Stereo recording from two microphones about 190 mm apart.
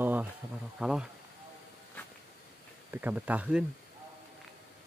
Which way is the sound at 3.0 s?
10° right (ahead or behind).